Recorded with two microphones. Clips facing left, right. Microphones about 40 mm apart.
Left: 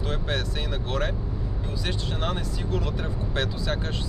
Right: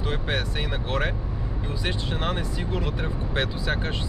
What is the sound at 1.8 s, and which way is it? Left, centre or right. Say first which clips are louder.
Speech: right 2 dB; centre.